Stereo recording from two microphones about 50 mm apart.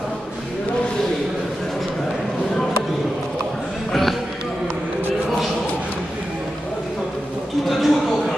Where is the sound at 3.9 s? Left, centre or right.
Centre.